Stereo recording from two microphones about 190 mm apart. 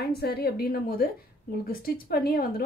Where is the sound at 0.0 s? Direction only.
55° left (ahead or behind).